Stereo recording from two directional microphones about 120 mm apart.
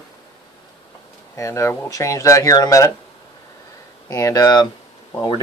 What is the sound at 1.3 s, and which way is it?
Speech, 25° left (ahead or behind).